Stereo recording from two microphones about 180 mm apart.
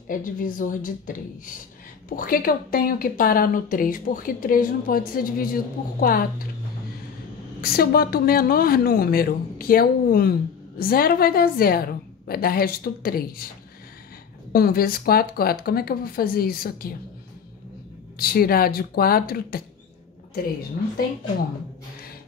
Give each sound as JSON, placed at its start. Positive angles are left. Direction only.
{"t": 0.1, "sound": "a woman's voice", "side_deg": 50}
{"t": 7.6, "sound": "a woman's voice", "side_deg": 55}
{"t": 14.5, "sound": "a woman's voice", "side_deg": 55}
{"t": 18.1, "sound": "a woman's voice", "side_deg": 55}